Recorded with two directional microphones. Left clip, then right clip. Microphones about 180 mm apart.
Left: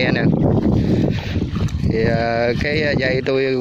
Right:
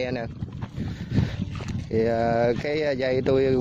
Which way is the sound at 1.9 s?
25° right (ahead or behind).